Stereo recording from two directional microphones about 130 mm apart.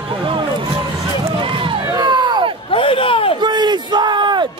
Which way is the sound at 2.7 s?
45° left (ahead or behind).